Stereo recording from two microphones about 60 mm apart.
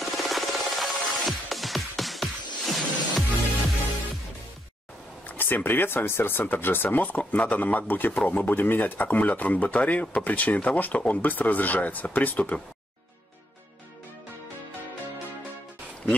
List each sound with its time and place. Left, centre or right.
0.0 s music: centre
5.2 s speech: left